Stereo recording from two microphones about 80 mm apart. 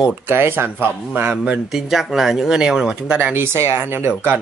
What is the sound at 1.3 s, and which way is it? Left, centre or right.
Speech, centre.